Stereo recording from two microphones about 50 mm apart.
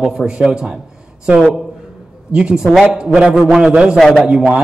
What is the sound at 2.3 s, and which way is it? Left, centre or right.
A man's voice, right.